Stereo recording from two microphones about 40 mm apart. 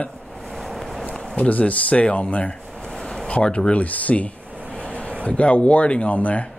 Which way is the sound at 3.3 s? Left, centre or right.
Left.